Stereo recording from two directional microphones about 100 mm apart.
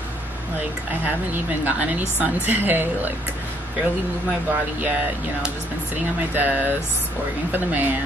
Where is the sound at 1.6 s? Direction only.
15° right (ahead or behind).